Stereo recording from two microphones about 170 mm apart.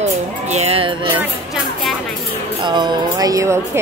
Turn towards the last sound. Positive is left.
turn(degrees=-15)  # may be behind; listen again after turning